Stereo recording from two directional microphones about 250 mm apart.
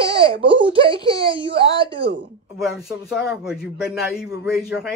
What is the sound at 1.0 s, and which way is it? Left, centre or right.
Baby cry, right.